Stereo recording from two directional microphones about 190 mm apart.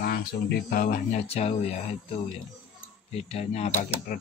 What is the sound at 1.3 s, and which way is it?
Speech, 35° left (ahead or behind).